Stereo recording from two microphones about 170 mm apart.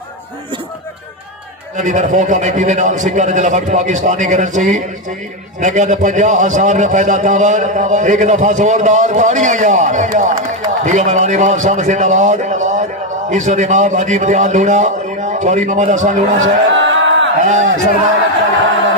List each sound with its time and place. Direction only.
1.8 s a man's voice: 45° right (ahead or behind)
16.7 s a sound: 90° right
17.4 s a man's voice: 45° right (ahead or behind)